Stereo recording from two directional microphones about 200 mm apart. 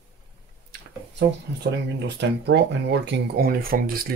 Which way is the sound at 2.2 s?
60° right (ahead or behind).